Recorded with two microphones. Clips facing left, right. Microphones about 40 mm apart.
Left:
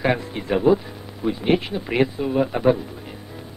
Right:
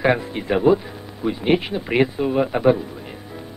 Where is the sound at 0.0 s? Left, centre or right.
Centre.